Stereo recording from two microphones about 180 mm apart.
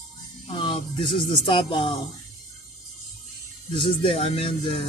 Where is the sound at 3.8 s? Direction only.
30° left (ahead or behind).